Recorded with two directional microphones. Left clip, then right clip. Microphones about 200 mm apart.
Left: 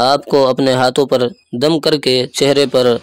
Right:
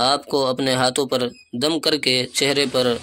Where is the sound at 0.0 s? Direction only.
45° left (ahead or behind).